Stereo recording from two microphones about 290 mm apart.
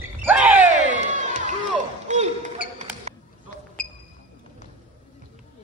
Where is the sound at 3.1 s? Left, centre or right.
Right.